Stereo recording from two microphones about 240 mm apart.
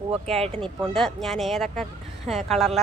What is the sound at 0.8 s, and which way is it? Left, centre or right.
A woman's voice, centre.